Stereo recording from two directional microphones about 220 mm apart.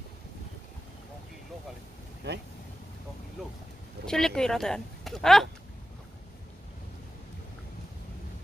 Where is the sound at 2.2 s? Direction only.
50° right (ahead or behind).